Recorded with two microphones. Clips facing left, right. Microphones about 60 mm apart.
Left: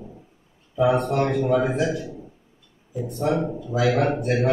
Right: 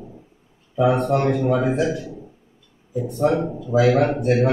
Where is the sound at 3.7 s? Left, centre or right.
Right.